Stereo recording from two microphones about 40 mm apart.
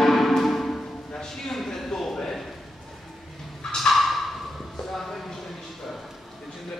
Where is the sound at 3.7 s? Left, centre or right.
Centre.